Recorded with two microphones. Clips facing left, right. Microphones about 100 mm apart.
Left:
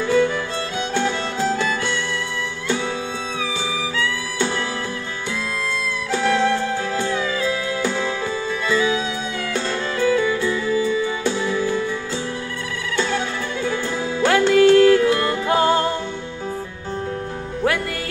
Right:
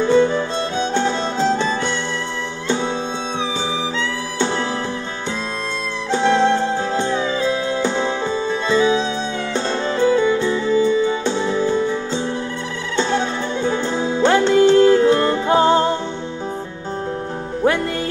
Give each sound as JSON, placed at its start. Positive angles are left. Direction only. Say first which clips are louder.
{"t": 0.0, "sound": "music", "louder": "right 3 dB", "side_deg": -25}
{"t": 6.1, "sound": "music", "louder": "right 3 dB", "side_deg": -25}